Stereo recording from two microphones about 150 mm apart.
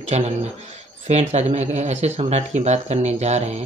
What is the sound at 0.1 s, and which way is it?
Speech, 45° right (ahead or behind).